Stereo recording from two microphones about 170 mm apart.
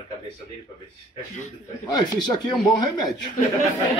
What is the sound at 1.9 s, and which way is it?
Speech, 25° left (ahead or behind).